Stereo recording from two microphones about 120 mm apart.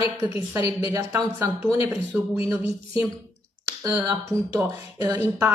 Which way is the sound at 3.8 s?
30° right (ahead or behind).